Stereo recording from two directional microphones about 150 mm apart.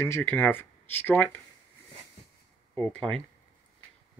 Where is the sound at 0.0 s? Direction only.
15° left (ahead or behind).